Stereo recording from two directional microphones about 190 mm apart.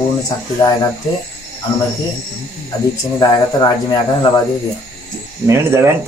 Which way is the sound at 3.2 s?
20° left (ahead or behind).